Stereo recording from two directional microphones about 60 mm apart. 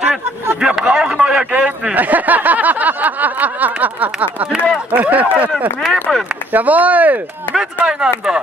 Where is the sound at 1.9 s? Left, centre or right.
Right.